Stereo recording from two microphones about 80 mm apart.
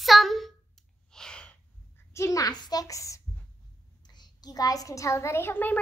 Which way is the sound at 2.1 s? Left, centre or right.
Left.